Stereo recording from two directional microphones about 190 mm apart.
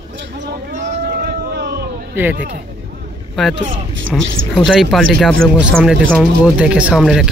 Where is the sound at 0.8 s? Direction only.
55° right (ahead or behind).